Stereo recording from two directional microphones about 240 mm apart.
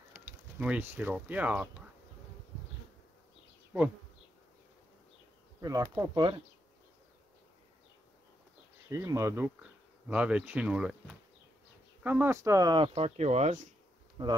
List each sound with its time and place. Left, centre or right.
0.1 s speech: centre
5.6 s speech: centre
8.8 s speech: centre
12.0 s speech: centre